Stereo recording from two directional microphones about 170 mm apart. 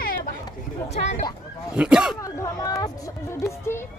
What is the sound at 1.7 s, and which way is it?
Speech, 5° right (ahead or behind).